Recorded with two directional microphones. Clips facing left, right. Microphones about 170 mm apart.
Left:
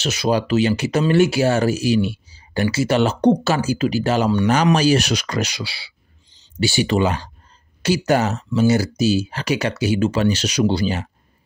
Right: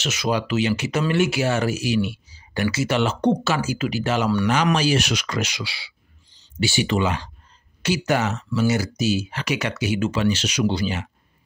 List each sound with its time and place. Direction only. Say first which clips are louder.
0.0 s speech: left 4 dB; 35° left (ahead or behind)